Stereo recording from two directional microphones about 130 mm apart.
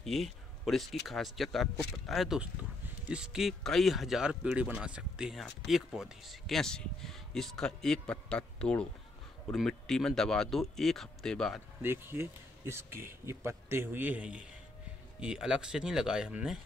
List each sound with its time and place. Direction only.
0.0 s speech: centre (ahead or behind)
11.8 s speech: 15° right (ahead or behind)